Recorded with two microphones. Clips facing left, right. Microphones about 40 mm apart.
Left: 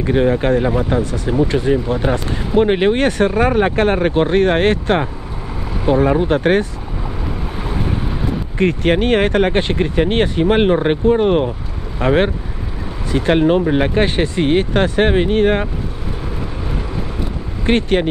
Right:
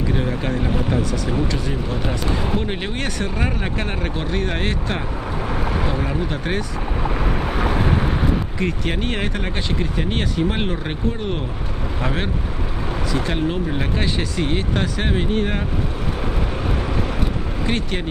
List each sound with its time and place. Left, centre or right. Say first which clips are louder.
0.1 s speech: left 14 dB; left
6.0 s speech: left 10 dB; left
7.5 s vehicle: right 5 dB; right
8.5 s speech: left 8 dB; left
17.6 s speech: left 10 dB; left